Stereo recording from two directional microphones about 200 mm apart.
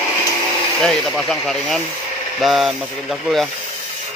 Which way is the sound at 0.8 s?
Centre (ahead or behind).